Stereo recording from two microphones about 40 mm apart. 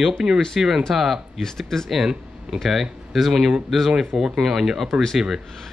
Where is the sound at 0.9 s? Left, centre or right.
Centre.